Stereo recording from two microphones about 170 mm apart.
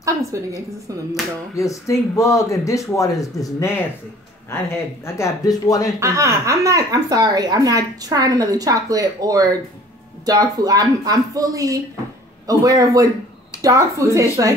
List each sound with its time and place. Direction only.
0.0 s a woman's voice: 20° right (ahead or behind)
1.5 s speech: 20° left (ahead or behind)
5.0 s speech: 15° left (ahead or behind)
5.9 s a woman's voice: 15° right (ahead or behind)